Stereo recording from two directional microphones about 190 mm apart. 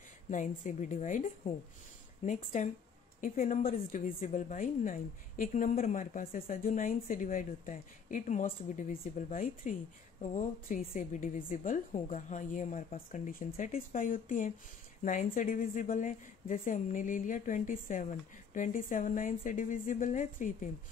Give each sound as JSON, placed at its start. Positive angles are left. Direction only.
{"t": 0.3, "sound": "a woman's voice", "side_deg": 40}